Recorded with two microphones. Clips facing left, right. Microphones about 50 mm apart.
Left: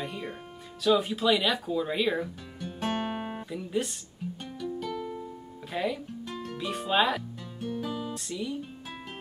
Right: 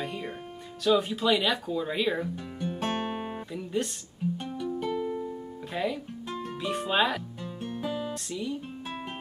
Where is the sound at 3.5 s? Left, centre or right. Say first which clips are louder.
Even; centre.